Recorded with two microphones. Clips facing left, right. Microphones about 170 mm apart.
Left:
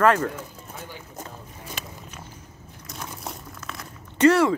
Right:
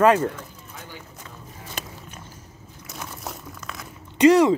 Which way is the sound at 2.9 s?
Centre (ahead or behind).